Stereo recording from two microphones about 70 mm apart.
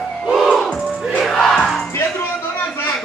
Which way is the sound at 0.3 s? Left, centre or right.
Centre.